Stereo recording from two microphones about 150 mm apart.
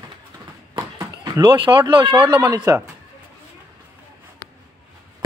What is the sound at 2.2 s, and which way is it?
Speech, 25° right (ahead or behind).